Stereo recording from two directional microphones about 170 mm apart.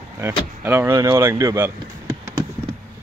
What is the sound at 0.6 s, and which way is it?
Speech, 15° right (ahead or behind).